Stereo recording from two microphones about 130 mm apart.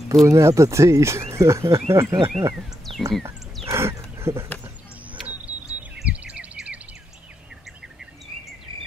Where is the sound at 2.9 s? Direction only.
40° right (ahead or behind).